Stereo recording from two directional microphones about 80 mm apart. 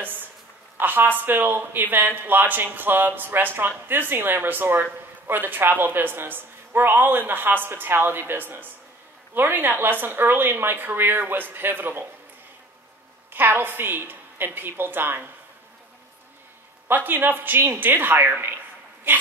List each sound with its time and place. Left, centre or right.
0.0 s a sound: right
0.7 s speech: right
13.3 s speech: right
16.8 s speech: right
19.1 s dog: right